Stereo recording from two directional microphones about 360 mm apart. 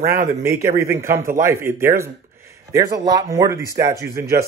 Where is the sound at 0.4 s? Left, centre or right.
Centre.